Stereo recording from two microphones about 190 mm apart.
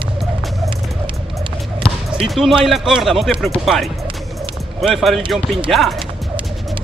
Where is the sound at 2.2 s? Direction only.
Centre (ahead or behind).